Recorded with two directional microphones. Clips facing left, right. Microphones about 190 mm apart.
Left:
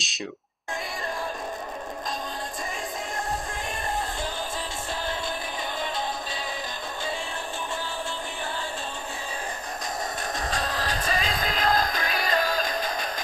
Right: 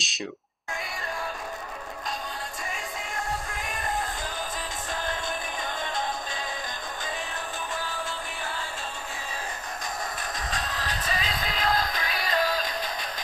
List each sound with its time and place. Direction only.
0.0 s speech: centre (ahead or behind)
10.3 s music: 45° left (ahead or behind)